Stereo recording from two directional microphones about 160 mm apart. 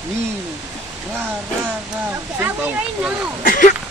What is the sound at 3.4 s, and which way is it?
Speech, 55° left (ahead or behind).